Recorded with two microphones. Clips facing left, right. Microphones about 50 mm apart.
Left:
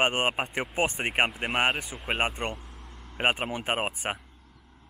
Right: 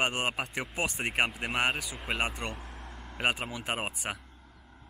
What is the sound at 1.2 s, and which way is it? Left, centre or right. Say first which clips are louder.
Speech: left 3 dB; centre.